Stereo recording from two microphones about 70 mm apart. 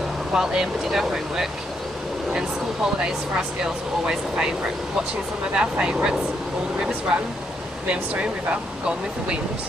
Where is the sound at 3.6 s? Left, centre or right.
Centre.